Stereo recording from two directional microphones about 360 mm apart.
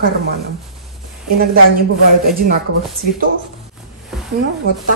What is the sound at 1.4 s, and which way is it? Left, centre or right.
Speech, right.